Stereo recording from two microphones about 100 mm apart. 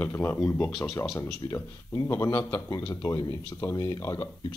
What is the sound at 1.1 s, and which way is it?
A man's voice, 30° left (ahead or behind).